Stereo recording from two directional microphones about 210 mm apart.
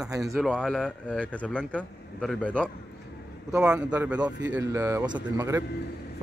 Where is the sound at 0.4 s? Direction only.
5° left (ahead or behind).